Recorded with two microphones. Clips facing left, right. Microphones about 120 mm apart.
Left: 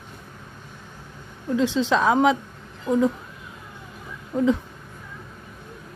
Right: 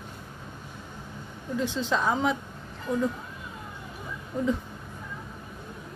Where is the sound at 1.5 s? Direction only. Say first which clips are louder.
Left 7 dB; 90° left.